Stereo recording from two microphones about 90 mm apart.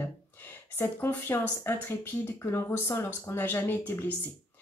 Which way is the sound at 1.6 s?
25° left (ahead or behind).